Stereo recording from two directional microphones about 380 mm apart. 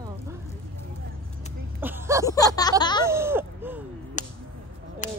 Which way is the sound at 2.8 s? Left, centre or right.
Centre.